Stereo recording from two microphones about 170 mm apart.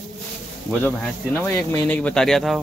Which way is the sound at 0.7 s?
10° left (ahead or behind).